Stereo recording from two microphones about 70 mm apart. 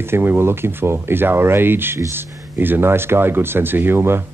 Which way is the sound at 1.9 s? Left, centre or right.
Right.